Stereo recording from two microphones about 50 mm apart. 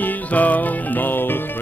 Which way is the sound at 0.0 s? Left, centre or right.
Left.